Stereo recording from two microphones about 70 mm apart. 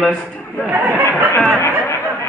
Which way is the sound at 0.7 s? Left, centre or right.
Right.